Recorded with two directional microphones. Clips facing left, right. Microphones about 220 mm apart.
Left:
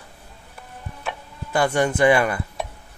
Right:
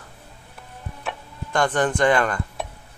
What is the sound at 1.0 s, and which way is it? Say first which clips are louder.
Music: even; 5° left (ahead or behind).